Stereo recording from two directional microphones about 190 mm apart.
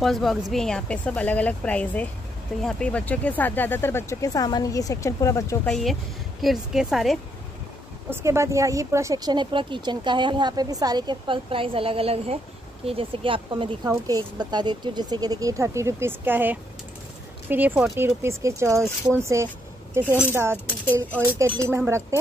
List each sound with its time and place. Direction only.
0.0 s speech: centre (ahead or behind)
5.7 s speech: centre (ahead or behind)
8.1 s speech: 15° right (ahead or behind)
21.5 s speech: 15° right (ahead or behind)